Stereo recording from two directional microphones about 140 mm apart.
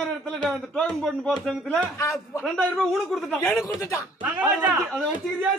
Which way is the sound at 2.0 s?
20° left (ahead or behind).